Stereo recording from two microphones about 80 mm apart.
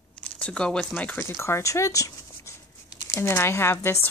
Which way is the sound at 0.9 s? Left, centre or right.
Left.